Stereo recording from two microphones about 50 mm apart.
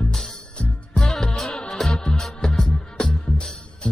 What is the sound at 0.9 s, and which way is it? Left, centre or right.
Music, centre.